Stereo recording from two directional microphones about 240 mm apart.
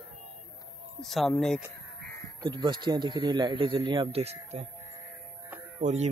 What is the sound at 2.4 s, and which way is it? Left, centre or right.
Speech, centre.